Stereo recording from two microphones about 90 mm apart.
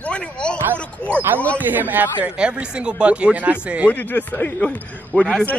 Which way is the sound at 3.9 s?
20° left (ahead or behind).